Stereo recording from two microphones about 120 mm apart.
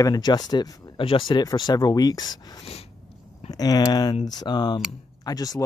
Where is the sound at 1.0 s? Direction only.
45° left (ahead or behind).